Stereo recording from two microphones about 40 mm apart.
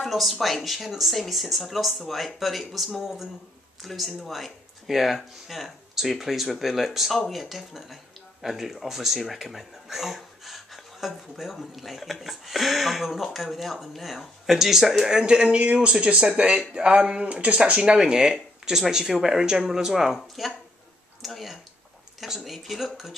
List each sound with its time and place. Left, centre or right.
0.0 s speech: centre
15.2 s speech: right
17.9 s speech: centre
20.2 s speech: centre